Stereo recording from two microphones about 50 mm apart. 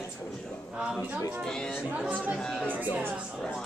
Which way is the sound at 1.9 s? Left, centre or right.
Right.